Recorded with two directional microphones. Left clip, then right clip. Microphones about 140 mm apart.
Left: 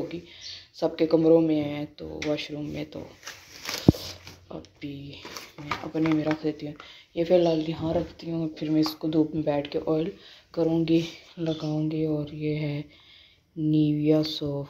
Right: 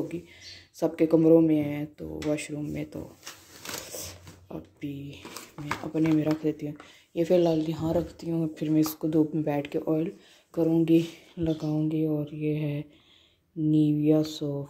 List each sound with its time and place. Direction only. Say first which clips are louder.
0.7 s speech: even; 45° right (ahead or behind)
2.5 s speech: even; 25° right (ahead or behind)
4.0 s a sound: left 3 dB; 35° right (ahead or behind)
5.9 s speech: even; 40° right (ahead or behind)
9.8 s speech: left 2 dB; 20° right (ahead or behind)